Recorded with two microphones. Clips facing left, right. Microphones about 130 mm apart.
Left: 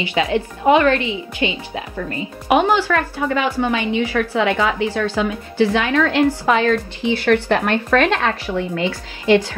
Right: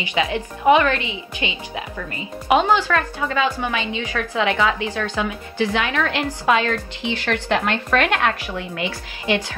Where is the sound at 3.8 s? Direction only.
20° right (ahead or behind).